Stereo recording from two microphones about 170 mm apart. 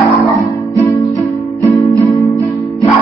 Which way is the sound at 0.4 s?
15° left (ahead or behind).